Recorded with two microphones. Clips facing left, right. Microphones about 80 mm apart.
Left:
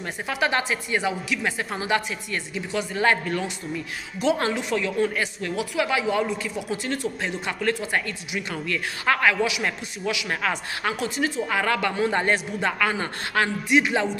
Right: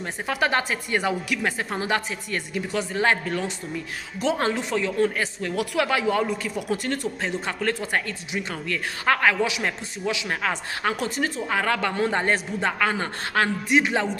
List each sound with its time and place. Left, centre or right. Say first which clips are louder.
0.3 s a woman's voice: right 1 dB; right
5.6 s a woman's voice: right 1 dB; right